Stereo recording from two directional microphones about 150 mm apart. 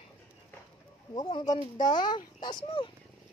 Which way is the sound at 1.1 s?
30° left (ahead or behind).